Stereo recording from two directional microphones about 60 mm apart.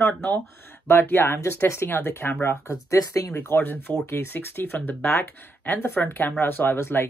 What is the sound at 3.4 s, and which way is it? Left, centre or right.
Speech, left.